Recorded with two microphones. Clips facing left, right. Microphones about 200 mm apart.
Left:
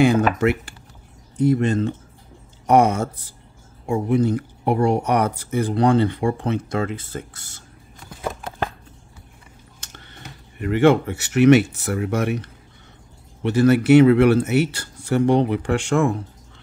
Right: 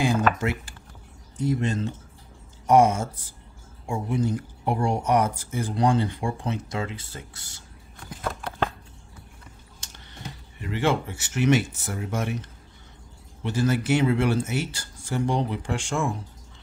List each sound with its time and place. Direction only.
0.4 s speech: 65° left (ahead or behind)
8.2 s a sound: 10° left (ahead or behind)
10.6 s speech: 60° left (ahead or behind)